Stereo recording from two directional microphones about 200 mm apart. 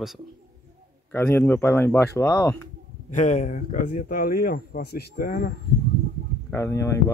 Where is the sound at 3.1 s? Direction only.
35° left (ahead or behind).